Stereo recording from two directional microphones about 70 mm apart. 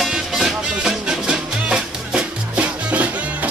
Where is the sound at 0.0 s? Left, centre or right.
Centre.